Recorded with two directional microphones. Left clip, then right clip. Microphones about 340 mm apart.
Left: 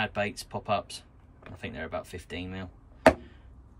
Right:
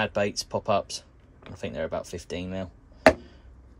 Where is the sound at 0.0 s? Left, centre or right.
Centre.